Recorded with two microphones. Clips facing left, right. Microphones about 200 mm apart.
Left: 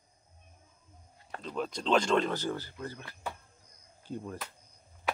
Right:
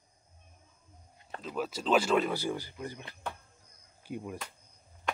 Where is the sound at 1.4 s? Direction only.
5° right (ahead or behind).